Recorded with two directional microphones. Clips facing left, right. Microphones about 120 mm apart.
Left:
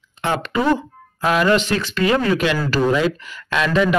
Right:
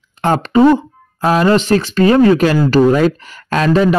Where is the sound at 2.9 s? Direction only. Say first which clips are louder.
Right 6 dB; 40° right (ahead or behind).